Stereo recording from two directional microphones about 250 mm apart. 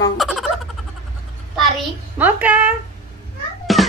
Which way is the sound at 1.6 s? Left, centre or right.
Centre.